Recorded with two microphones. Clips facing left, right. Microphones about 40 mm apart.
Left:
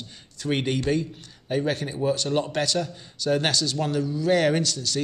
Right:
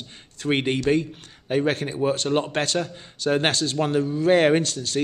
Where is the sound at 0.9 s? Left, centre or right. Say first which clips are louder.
Right 3 dB; right.